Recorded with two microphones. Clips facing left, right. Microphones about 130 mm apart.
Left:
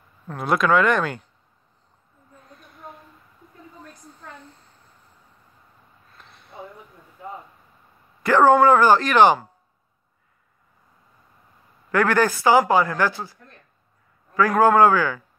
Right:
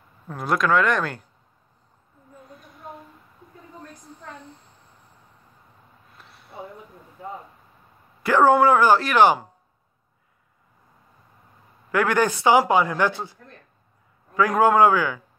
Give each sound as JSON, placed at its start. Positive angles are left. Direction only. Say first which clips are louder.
{"t": 0.3, "sound": "speech", "louder": "left 2 dB", "side_deg": 0}
{"t": 6.1, "sound": "a sound", "louder": "left 1 dB", "side_deg": -5}
{"t": 8.2, "sound": "speech", "louder": "left 2 dB", "side_deg": -10}
{"t": 11.9, "sound": "speech", "louder": "left 1 dB", "side_deg": -10}
{"t": 14.6, "sound": "speech", "louder": "left 1 dB", "side_deg": -10}